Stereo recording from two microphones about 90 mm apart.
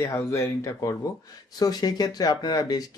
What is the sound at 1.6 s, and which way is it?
Speech, 45° left (ahead or behind).